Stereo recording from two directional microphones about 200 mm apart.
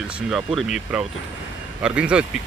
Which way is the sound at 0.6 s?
Centre (ahead or behind).